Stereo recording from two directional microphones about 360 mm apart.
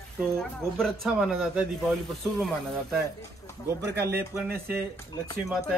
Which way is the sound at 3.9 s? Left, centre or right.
Centre.